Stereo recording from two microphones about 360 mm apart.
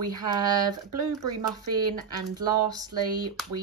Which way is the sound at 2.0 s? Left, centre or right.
Centre.